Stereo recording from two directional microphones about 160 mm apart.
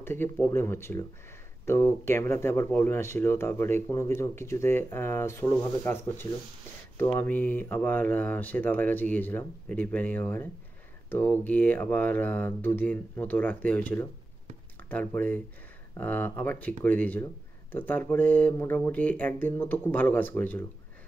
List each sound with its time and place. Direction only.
0.0 s speech: 15° left (ahead or behind)